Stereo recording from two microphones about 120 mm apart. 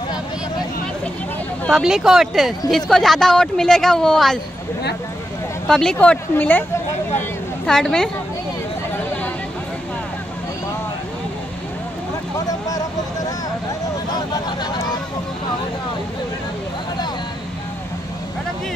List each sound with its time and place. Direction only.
1.7 s speech: 5° right (ahead or behind)
5.7 s speech: 5° left (ahead or behind)
7.6 s speech: 5° left (ahead or behind)
8.9 s a sound: 10° left (ahead or behind)
12.4 s vehicle: 30° left (ahead or behind)
14.1 s a sound: 35° left (ahead or behind)